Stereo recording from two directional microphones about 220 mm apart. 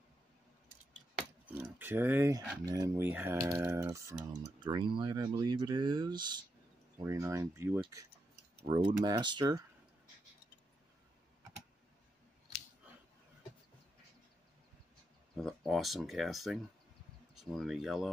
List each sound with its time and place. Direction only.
1.8 s speech: 10° right (ahead or behind)
4.4 s speech: 20° right (ahead or behind)
15.3 s speech: centre (ahead or behind)